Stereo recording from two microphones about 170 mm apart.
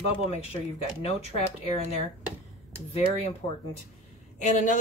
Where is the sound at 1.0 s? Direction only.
35° left (ahead or behind).